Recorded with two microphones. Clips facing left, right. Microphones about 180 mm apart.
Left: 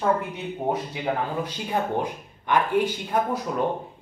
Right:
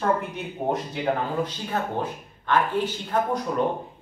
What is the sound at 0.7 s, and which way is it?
Speech, 10° left (ahead or behind).